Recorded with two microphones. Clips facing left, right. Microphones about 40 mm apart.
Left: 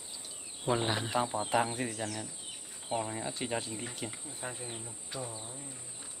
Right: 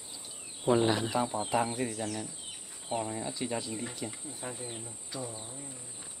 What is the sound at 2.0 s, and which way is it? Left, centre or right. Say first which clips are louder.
Speech: right 2 dB; centre.